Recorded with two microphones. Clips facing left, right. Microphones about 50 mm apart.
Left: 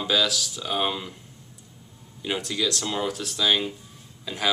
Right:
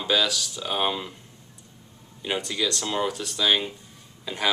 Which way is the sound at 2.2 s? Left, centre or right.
Centre.